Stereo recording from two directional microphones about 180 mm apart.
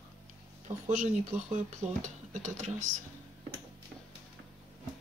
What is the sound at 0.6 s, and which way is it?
Speech, 40° right (ahead or behind).